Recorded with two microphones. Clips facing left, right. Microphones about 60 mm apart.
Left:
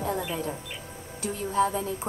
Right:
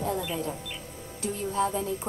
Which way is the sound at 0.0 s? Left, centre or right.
Left.